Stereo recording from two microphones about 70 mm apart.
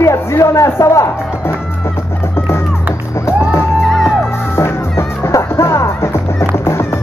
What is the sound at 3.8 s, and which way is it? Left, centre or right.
Music, centre.